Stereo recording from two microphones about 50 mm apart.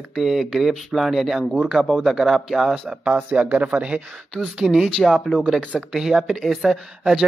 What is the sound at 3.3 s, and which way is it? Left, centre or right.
Speech, right.